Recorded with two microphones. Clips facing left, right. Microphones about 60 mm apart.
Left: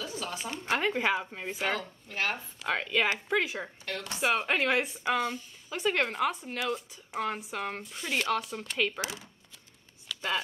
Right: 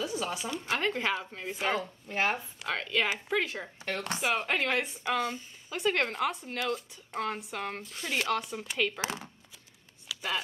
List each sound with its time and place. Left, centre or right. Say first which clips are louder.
0.0 s a sound: right 4 dB; centre
0.7 s speech: left 3 dB; centre
1.8 s speech: right 3 dB; centre
2.6 s speech: left 3 dB; centre
9.0 s speech: right 3 dB; right
10.0 s a sound: left 2 dB; centre